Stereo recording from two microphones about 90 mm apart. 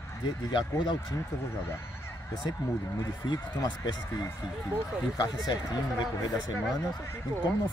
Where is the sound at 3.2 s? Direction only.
50° left (ahead or behind).